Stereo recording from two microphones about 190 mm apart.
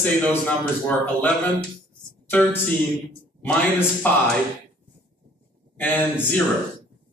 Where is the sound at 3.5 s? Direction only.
10° left (ahead or behind).